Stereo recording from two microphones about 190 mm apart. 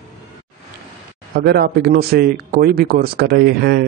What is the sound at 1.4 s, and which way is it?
Speech, 55° right (ahead or behind).